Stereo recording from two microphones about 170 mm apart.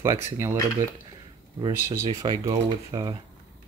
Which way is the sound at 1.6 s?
30° right (ahead or behind).